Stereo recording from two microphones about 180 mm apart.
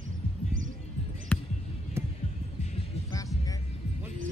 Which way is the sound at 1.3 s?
10° left (ahead or behind).